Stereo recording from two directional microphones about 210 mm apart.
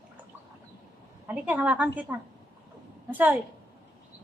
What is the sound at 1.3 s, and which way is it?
A woman's voice, 5° right (ahead or behind).